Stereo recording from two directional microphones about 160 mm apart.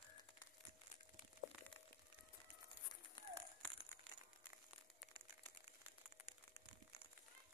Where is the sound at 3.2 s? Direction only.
25° left (ahead or behind).